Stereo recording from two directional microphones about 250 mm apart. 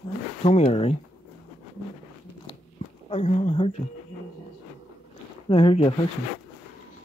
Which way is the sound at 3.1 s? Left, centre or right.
Left.